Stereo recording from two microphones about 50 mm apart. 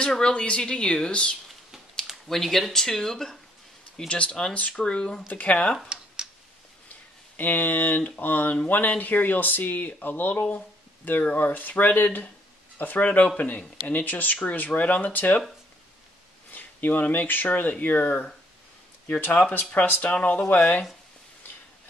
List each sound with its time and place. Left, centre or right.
0.0 s a woman's voice: centre
2.2 s speech: centre
4.1 s a woman's voice: left
5.3 s a woman's voice: left
7.3 s speech: left
16.5 s speech: left
19.7 s a woman's voice: left